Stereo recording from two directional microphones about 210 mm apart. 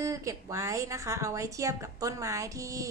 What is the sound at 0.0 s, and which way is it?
A woman's voice, 15° right (ahead or behind).